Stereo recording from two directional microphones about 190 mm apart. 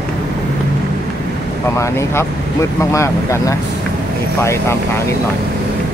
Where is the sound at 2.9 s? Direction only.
15° left (ahead or behind).